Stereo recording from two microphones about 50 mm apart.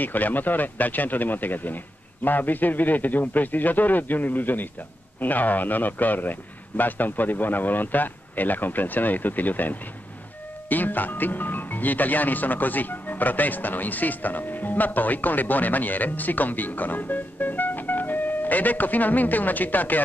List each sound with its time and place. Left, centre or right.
0.0 s speech: left